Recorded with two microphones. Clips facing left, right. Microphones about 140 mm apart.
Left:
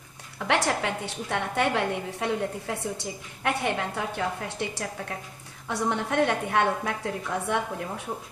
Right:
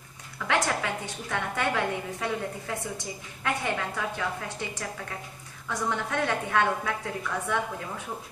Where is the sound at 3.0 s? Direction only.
60° left (ahead or behind).